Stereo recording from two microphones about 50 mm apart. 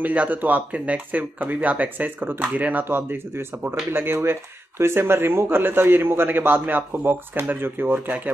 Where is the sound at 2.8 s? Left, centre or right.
Right.